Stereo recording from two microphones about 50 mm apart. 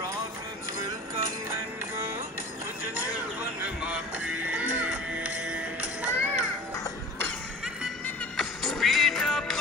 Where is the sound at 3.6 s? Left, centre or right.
Centre.